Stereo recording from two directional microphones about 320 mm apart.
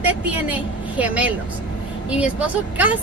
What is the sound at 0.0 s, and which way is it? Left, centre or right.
A woman's voice, centre.